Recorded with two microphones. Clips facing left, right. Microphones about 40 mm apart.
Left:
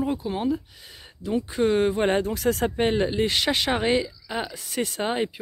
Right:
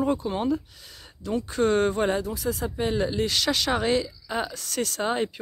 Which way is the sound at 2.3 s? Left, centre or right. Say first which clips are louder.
Left 5 dB; left.